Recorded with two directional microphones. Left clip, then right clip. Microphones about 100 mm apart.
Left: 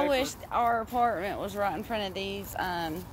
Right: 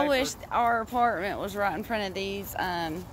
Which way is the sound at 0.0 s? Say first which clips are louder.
Right 2 dB; 50° right (ahead or behind).